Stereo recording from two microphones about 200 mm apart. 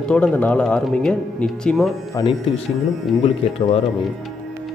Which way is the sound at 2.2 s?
25° left (ahead or behind).